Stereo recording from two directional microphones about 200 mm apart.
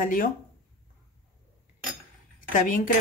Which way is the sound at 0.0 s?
40° left (ahead or behind).